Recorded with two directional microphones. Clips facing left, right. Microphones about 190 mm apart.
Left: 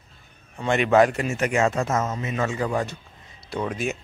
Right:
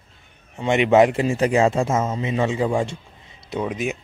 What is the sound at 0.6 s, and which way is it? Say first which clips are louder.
A man's voice: right 3 dB; 20° right (ahead or behind).